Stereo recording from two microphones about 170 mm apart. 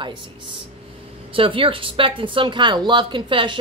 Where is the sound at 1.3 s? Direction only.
30° right (ahead or behind).